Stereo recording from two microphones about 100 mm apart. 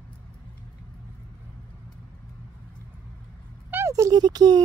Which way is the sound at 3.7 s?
30° right (ahead or behind).